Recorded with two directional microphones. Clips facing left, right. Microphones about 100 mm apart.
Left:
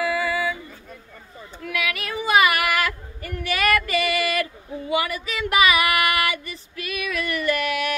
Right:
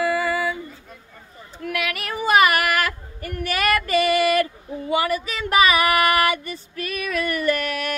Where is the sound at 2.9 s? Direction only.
45° right (ahead or behind).